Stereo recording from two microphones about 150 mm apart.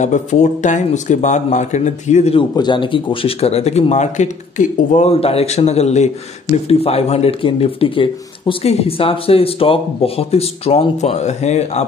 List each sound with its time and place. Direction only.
0.0 s speech: 55° left (ahead or behind)
2.3 s speech: 30° left (ahead or behind); by 11.8 s 45° left (ahead or behind)